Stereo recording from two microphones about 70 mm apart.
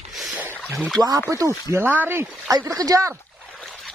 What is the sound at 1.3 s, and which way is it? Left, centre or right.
Speech, right.